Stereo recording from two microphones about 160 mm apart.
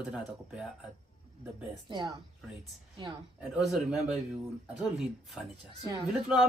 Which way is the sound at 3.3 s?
Centre (ahead or behind).